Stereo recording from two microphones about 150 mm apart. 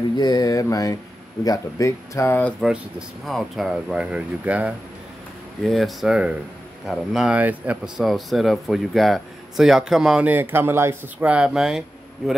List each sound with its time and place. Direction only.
0.2 s speech: 25° left (ahead or behind)
2.6 s speech: 5° right (ahead or behind)